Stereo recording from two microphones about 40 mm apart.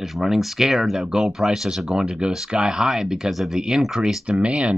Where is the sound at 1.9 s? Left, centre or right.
Right.